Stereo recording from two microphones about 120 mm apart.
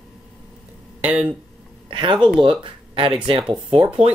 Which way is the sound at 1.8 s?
45° right (ahead or behind).